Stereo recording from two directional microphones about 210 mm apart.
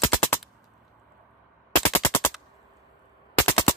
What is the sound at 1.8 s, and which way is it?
Machine gun, 10° left (ahead or behind).